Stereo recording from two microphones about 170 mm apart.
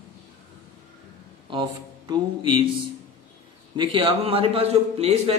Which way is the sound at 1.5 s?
30° right (ahead or behind).